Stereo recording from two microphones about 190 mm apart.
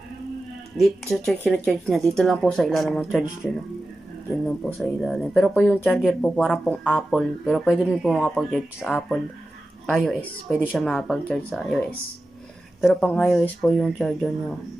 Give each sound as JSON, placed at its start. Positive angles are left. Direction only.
{"t": 0.7, "sound": "speech", "side_deg": 0}